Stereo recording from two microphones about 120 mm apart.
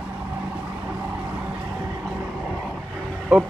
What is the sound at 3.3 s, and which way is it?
Speech, 10° right (ahead or behind).